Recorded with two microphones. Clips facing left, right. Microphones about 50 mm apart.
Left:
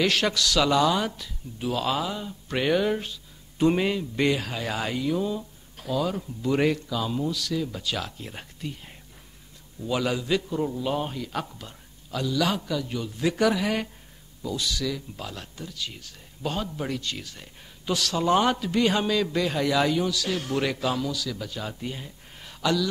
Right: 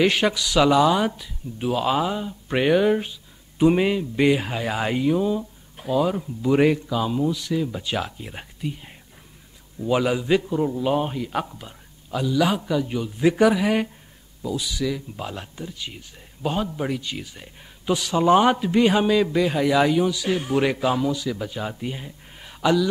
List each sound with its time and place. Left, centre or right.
0.0 s speech: centre